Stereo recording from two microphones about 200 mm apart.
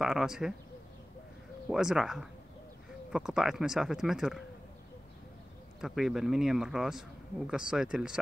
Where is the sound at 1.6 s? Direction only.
Centre (ahead or behind).